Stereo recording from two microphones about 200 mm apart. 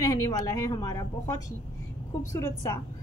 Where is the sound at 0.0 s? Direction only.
15° left (ahead or behind).